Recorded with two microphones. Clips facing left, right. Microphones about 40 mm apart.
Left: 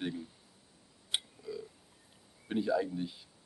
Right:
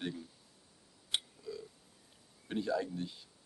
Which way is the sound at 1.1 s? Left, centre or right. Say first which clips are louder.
Left 1 dB; centre.